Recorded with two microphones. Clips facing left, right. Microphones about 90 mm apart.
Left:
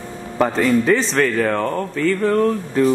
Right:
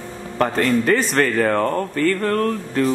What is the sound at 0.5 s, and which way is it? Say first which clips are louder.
Speech: left 2 dB; 5° left (ahead or behind).